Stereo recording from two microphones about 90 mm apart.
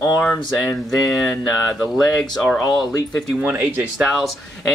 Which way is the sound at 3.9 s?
Centre (ahead or behind).